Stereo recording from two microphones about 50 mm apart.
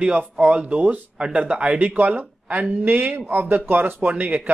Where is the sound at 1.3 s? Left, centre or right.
Right.